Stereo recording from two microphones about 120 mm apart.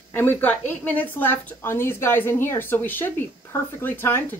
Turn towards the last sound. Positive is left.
turn(degrees=20)  # may be behind; listen again after turning